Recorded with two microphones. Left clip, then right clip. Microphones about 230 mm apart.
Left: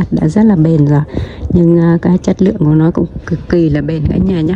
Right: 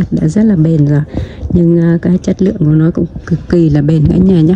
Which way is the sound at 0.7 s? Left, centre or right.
Left.